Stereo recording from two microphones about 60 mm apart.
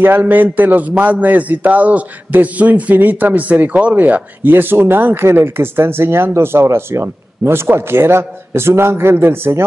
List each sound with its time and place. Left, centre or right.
0.0 s a man's voice: right